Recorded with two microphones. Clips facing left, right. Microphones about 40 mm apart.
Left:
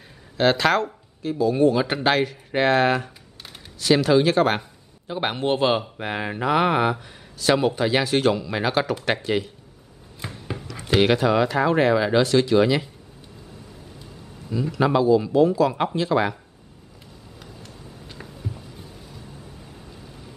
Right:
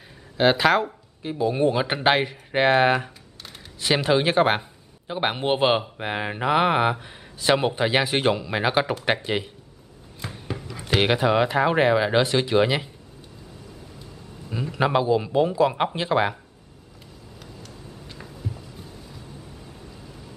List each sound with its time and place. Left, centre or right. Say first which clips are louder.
0.4 s speech: even; centre
1.4 s speech: left 3 dB; right
10.2 s a sound: left 1 dB; centre
11.0 s speech: left 1 dB; centre
14.5 s speech: left 2 dB; right